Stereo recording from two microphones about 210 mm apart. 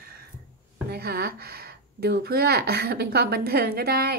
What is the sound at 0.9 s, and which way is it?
Speech, 50° right (ahead or behind).